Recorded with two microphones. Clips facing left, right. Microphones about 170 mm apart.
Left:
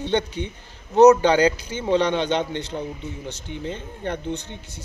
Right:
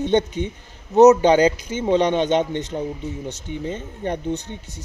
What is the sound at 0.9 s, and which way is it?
Speech, 20° right (ahead or behind).